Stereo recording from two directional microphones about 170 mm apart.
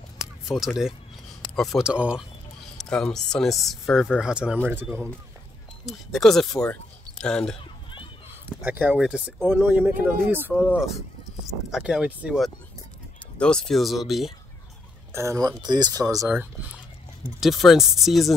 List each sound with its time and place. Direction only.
0.2 s a sound: centre (ahead or behind)
1.5 s speech: centre (ahead or behind)
2.8 s speech: 5° left (ahead or behind); by 5.0 s 10° right (ahead or behind)
5.9 s speech: centre (ahead or behind)
8.5 s speech: 10° right (ahead or behind)
10.5 s speech: centre (ahead or behind)
13.4 s speech: 5° left (ahead or behind)
15.1 s speech: 20° right (ahead or behind)
17.4 s speech: centre (ahead or behind)